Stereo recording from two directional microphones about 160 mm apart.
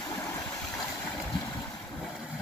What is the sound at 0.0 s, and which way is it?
Stream, 20° left (ahead or behind).